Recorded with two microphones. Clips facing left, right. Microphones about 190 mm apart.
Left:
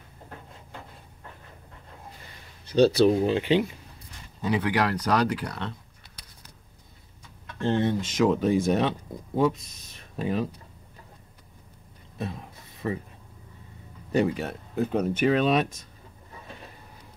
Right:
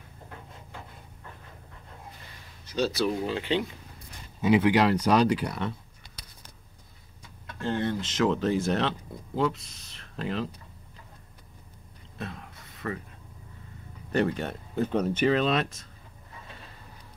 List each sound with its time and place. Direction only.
2.7 s speech: 30° left (ahead or behind)
4.4 s speech: 15° right (ahead or behind)
7.6 s speech: 20° left (ahead or behind)
10.1 s speech: 15° left (ahead or behind)
12.2 s a sound: 15° left (ahead or behind)
14.1 s speech: 5° left (ahead or behind)